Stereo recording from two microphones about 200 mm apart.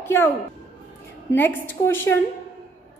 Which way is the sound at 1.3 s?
10° left (ahead or behind).